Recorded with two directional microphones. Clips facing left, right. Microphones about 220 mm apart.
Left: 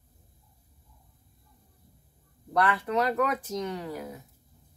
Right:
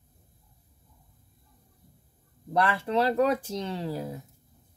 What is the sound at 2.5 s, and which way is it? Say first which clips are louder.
Speech: right 1 dB; 25° right (ahead or behind).